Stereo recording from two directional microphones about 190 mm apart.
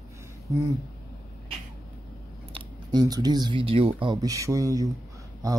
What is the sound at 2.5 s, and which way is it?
Speech, 20° right (ahead or behind).